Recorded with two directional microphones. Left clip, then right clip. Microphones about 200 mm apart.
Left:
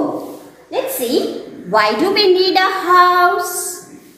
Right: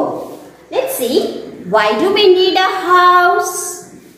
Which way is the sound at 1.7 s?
20° left (ahead or behind).